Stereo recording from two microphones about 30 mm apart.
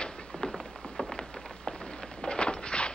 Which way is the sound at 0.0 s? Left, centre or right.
Left.